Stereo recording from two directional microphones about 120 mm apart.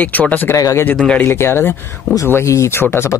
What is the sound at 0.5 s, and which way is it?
Speech, 30° left (ahead or behind).